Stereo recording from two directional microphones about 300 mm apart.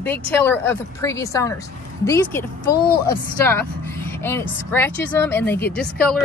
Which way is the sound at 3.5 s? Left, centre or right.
Centre.